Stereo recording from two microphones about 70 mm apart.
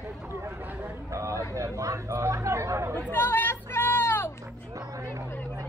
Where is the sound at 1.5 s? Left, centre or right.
Right.